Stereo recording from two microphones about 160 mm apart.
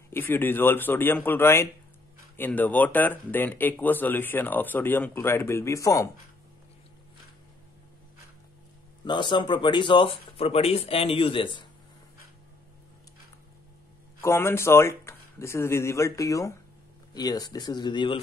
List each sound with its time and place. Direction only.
0.1 s speech: 15° left (ahead or behind)
9.0 s speech: 30° left (ahead or behind)
14.2 s speech: 15° left (ahead or behind)